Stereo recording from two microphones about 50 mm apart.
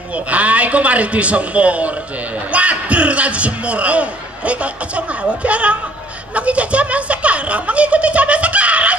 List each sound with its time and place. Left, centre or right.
0.1 s speech: right